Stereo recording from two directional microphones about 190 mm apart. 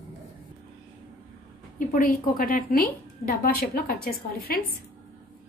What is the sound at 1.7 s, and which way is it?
A woman's voice, 45° left (ahead or behind).